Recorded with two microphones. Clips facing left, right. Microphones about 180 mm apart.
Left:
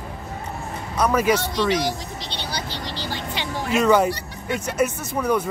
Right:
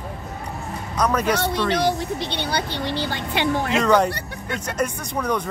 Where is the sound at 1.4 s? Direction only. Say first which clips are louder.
Right 1 dB; 55° right (ahead or behind).